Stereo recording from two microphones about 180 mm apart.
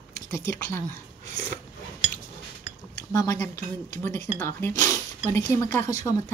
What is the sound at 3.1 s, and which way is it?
A woman's voice, 15° left (ahead or behind).